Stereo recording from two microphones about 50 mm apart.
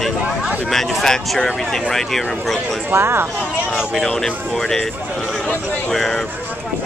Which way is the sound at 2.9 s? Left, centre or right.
Right.